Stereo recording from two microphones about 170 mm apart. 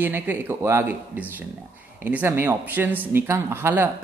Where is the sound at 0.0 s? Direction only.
10° right (ahead or behind).